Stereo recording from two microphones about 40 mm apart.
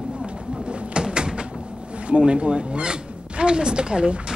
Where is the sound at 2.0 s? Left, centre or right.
Right.